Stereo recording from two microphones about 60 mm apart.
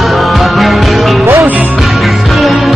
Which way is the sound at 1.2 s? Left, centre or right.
Right.